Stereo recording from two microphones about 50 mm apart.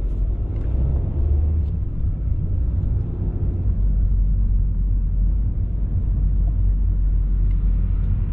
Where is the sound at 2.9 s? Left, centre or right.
Centre.